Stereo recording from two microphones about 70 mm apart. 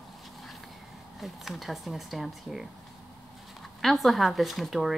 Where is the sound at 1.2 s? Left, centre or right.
Centre.